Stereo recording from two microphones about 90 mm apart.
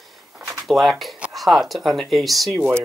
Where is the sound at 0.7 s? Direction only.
Centre (ahead or behind).